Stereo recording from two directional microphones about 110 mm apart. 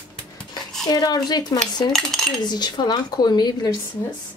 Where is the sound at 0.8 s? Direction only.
35° left (ahead or behind).